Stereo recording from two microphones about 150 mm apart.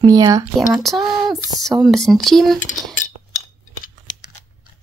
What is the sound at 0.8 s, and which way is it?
Speech, centre (ahead or behind).